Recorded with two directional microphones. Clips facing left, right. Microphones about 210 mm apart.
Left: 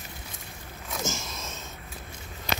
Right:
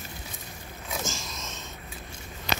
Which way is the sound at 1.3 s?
10° left (ahead or behind).